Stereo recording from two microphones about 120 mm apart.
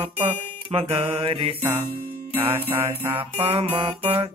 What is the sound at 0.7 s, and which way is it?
Mantra, 50° right (ahead or behind).